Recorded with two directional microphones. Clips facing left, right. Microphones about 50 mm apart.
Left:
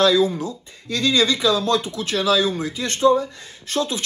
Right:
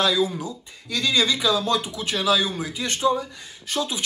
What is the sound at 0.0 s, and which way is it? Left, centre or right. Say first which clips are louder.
Speech: left 5 dB; centre.